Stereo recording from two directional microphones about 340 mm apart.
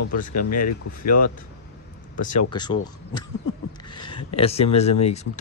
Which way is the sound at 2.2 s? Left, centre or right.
Centre.